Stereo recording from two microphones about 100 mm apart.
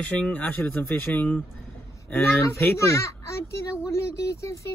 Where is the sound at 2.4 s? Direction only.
30° left (ahead or behind).